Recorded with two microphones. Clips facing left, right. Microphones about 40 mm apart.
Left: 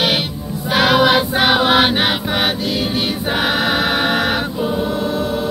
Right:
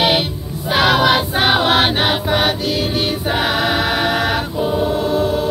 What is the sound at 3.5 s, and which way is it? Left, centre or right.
Music, left.